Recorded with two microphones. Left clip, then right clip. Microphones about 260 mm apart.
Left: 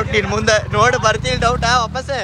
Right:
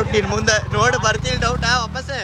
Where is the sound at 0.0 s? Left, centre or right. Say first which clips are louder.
Left 2 dB; centre.